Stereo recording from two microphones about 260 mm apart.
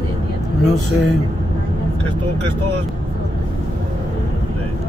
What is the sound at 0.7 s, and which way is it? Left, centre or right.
Speech, left.